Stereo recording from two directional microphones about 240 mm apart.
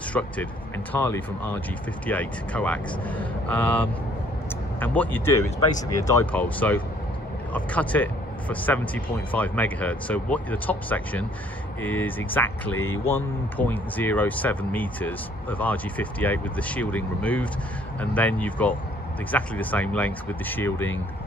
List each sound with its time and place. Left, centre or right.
0.2 s speech: centre